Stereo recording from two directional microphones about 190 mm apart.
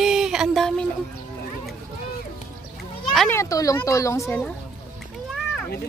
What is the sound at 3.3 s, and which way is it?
Speech, 15° left (ahead or behind).